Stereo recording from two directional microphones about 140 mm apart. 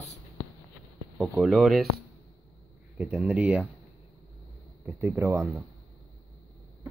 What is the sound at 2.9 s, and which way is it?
Speech, 10° right (ahead or behind).